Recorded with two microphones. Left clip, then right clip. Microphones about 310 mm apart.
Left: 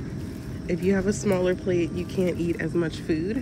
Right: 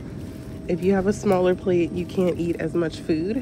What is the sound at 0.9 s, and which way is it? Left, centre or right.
Speech, right.